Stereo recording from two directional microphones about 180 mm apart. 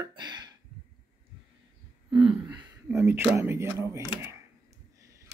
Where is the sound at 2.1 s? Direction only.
30° right (ahead or behind).